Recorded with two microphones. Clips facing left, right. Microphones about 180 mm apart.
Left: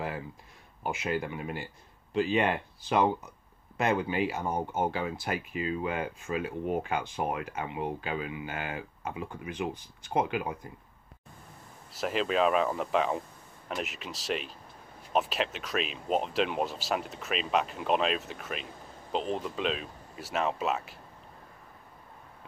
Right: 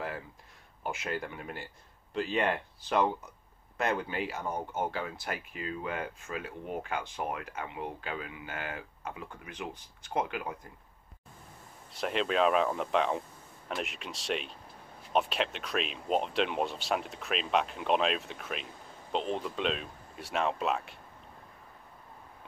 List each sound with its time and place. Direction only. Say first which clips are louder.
0.8 s speech: left 4 dB; 10° left (ahead or behind)
11.9 s speech: left 1 dB; centre (ahead or behind)